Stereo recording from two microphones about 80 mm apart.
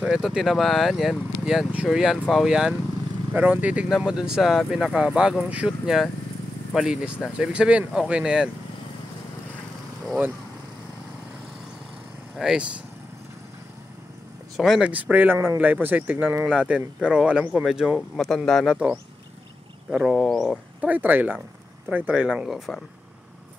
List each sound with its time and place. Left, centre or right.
0.0 s speech: centre
3.3 s speech: centre
3.9 s speech: centre
12.4 s speech: centre
14.8 s speech: centre
18.1 s speech: centre
18.7 s speech: centre
20.2 s speech: centre
20.8 s speech: right